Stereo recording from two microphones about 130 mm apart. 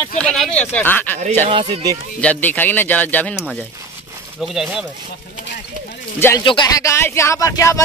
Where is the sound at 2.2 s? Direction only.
10° left (ahead or behind).